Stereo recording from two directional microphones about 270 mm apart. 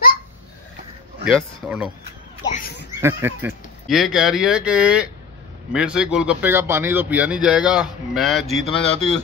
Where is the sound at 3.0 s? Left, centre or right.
Centre.